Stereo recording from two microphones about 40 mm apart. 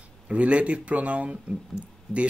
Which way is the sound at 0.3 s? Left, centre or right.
Right.